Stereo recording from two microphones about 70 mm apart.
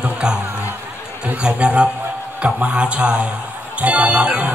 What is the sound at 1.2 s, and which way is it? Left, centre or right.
A man's voice, centre.